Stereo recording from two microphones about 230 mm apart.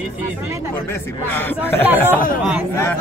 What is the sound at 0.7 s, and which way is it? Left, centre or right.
Speech, centre.